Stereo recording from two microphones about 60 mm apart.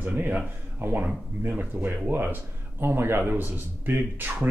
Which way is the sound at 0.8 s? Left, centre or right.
Right.